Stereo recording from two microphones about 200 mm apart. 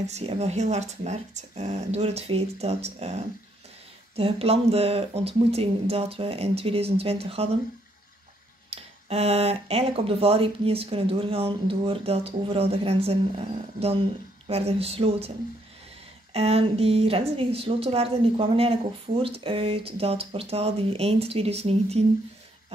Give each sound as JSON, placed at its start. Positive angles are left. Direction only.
{"t": 0.0, "sound": "a woman's voice", "side_deg": -30}
{"t": 8.6, "sound": "a woman's voice", "side_deg": -30}
{"t": 16.3, "sound": "a woman's voice", "side_deg": -30}